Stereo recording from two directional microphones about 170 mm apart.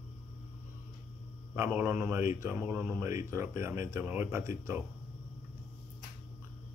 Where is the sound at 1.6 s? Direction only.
10° right (ahead or behind).